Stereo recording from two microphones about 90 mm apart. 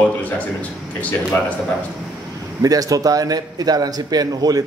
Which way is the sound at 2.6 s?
40° right (ahead or behind).